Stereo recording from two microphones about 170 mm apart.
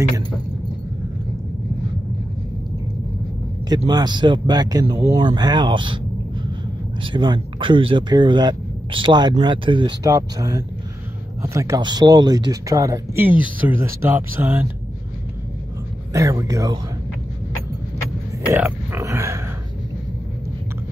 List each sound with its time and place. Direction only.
3.6 s speech: 25° right (ahead or behind)
7.0 s speech: 30° right (ahead or behind); by 14.7 s 10° right (ahead or behind)
16.1 s speech: 20° right (ahead or behind)
18.5 s grunt: 15° right (ahead or behind)